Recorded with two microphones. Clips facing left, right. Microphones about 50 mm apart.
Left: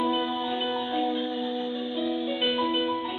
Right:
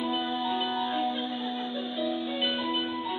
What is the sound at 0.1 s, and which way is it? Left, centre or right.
Music, left.